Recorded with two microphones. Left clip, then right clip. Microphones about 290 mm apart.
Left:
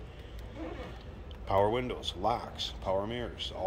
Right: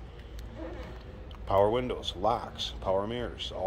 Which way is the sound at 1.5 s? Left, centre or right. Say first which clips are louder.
Right 3 dB; centre.